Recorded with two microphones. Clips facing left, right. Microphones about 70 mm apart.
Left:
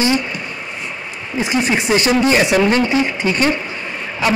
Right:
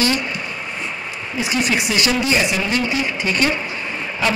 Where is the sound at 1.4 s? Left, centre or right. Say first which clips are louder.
Left 3 dB; left.